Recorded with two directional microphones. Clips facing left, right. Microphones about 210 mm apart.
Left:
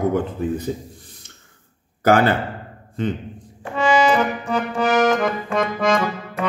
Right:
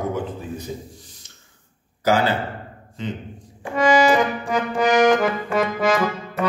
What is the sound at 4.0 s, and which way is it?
Accordion, 10° right (ahead or behind).